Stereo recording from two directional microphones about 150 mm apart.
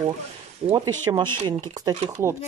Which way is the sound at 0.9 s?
30° right (ahead or behind).